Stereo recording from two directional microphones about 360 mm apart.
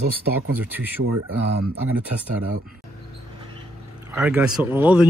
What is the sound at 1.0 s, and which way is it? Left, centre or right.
Speech, right.